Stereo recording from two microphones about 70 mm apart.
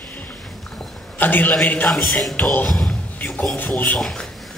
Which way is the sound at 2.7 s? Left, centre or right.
Centre.